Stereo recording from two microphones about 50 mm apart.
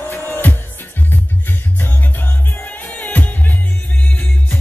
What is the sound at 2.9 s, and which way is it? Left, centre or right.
Music, left.